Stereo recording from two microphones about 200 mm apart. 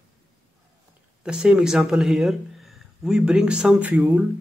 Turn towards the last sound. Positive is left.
turn(degrees=-10)  # may be behind; listen again after turning